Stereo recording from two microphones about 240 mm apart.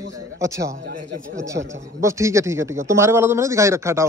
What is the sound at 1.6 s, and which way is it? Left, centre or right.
Speech, right.